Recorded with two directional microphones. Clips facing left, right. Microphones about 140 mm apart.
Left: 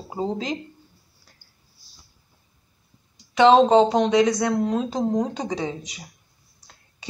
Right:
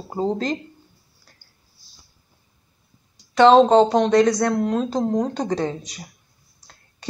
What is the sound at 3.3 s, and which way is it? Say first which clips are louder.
Speech: right 2 dB; 10° left (ahead or behind).